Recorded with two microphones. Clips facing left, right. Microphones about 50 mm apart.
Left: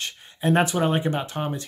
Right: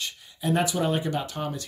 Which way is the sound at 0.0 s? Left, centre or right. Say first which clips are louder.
Left 4 dB; left.